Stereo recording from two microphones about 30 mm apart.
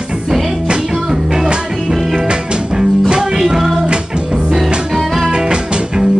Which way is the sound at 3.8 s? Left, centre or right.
Right.